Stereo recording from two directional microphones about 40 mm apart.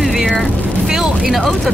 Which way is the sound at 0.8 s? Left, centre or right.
Centre.